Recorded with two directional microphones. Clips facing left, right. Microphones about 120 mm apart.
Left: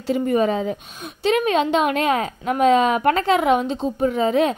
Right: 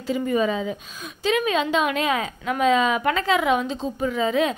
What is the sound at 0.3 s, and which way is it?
A woman's voice, 50° left (ahead or behind).